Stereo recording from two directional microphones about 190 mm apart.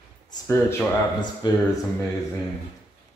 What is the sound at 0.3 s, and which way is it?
Speech, 15° left (ahead or behind).